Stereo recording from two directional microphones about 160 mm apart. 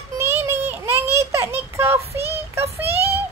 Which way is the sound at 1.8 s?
15° right (ahead or behind).